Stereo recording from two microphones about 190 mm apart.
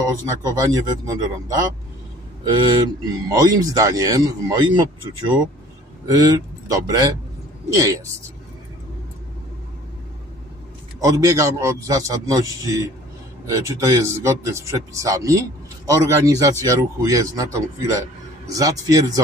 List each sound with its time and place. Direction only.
0.0 s speech: 20° right (ahead or behind)
6.0 s speech: 20° right (ahead or behind)
11.0 s speech: 15° right (ahead or behind)